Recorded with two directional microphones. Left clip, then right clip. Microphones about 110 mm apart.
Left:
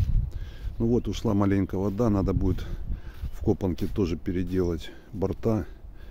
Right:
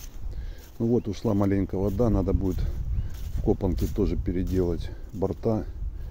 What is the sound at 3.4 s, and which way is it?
Speech, 15° left (ahead or behind).